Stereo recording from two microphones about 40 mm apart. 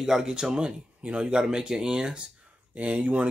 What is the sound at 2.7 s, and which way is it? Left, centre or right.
Speech, right.